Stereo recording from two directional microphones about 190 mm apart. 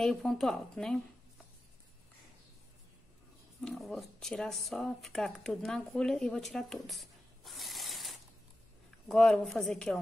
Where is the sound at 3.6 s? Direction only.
Centre (ahead or behind).